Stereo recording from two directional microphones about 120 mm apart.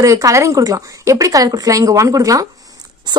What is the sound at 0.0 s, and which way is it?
A woman's voice, 25° right (ahead or behind).